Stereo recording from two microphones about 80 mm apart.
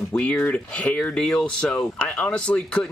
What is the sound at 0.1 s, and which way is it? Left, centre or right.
Speech, centre.